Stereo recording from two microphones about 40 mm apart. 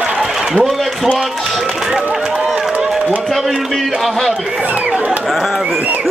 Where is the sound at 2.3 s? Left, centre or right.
Centre.